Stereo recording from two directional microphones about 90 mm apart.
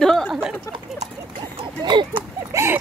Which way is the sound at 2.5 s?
30° right (ahead or behind).